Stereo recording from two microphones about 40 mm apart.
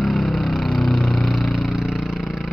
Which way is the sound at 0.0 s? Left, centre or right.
Centre.